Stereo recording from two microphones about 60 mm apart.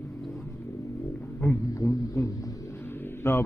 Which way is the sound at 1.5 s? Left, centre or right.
Left.